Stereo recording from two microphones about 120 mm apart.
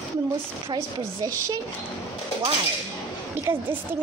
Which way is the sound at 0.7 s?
35° right (ahead or behind).